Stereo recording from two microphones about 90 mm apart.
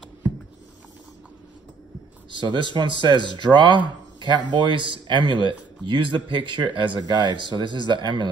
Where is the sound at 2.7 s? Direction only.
60° right (ahead or behind).